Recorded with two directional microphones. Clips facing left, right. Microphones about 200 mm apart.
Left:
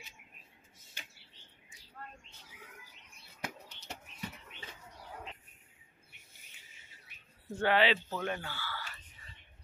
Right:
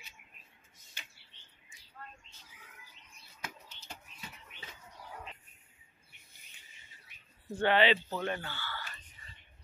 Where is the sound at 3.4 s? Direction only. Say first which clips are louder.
Left 4 dB; 70° left (ahead or behind).